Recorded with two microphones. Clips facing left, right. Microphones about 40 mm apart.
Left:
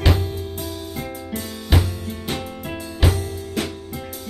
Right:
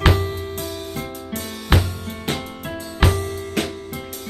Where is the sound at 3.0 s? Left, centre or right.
Right.